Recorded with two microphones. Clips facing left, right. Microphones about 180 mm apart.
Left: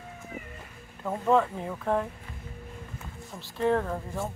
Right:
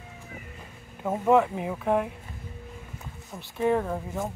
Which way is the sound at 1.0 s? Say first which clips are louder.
Right 3 dB; 15° right (ahead or behind).